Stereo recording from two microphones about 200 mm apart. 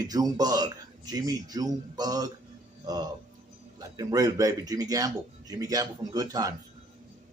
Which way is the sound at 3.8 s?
20° right (ahead or behind).